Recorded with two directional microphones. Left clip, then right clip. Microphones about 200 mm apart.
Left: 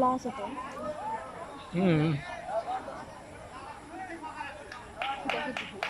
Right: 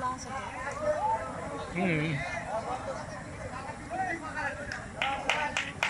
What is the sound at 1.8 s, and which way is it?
Speech, 15° left (ahead or behind).